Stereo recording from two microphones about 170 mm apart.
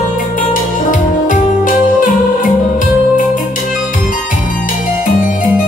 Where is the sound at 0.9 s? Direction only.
50° left (ahead or behind).